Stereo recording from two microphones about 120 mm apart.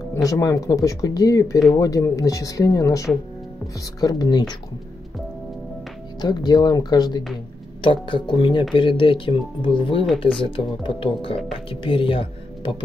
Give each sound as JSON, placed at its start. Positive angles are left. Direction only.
{"t": 0.1, "sound": "speech", "side_deg": 30}
{"t": 6.2, "sound": "speech", "side_deg": 35}